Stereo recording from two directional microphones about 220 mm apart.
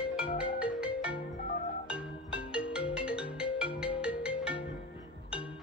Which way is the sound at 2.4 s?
5° right (ahead or behind).